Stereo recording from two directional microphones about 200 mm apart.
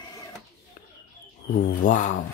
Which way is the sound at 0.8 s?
40° left (ahead or behind).